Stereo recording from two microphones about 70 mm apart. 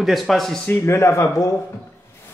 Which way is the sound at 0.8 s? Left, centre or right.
Left.